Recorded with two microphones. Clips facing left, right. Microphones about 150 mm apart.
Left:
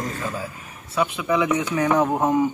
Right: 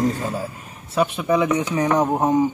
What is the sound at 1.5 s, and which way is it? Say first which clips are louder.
Speech: right 1 dB; 30° right (ahead or behind).